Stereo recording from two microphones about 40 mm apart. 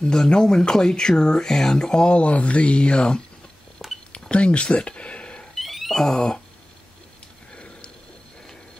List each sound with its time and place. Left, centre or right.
0.0 s speech: centre
2.1 s speech: left
4.1 s a sound: left
5.5 s cat: centre
5.9 s speech: centre
7.5 s a sound: left